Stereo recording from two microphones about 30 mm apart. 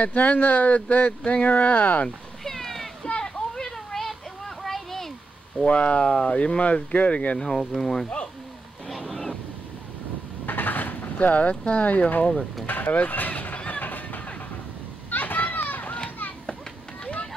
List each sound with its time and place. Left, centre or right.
0.0 s speech: left
2.0 s a sound: centre
3.1 s a sound: left
3.5 s a sound: centre
5.7 s speech: left
6.0 s speech: left
6.3 s speech: left
7.3 s speech: centre
8.8 s waves: centre
10.4 s a sound: left
11.1 s speech: left
11.6 s speech: left
12.6 s run: left
15.0 s children playing: left